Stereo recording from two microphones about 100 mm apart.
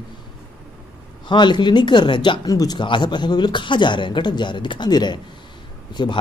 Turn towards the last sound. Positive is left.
turn(degrees=50)  # may be behind; listen again after turning